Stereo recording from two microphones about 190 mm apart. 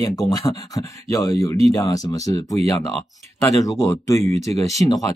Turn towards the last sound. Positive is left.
turn(degrees=20)  # may be behind; listen again after turning